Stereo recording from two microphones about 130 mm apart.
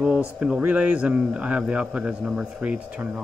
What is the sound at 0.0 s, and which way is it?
Speech, 5° right (ahead or behind).